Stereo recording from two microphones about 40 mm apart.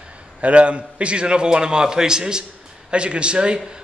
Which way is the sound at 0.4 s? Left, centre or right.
Right.